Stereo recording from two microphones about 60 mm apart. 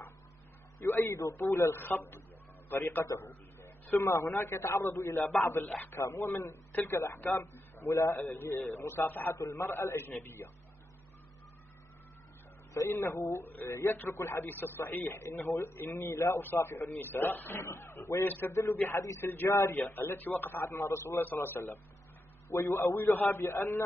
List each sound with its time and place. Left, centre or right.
1.0 s a man's voice: left
1.7 s speech: left
3.2 s a sound: left
4.0 s a man's voice: left
9.3 s a man's voice: left
9.7 s speech: left
12.7 s a man's voice: left
13.4 s speech: left
13.7 s a man's voice: left
18.9 s a man's voice: left
19.2 s speech: left
20.8 s a man's voice: left
21.2 s speech: left
22.8 s a man's voice: left